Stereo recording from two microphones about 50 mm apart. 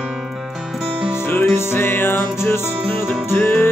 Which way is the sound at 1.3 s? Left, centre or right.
Left.